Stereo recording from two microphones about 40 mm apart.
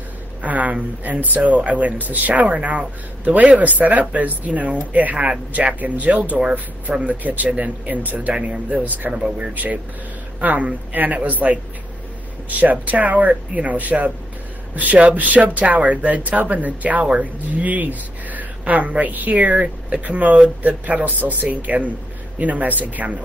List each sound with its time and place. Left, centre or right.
0.4 s speech: right
8.4 s speech: right
9.1 s speech: right
9.5 s speech: right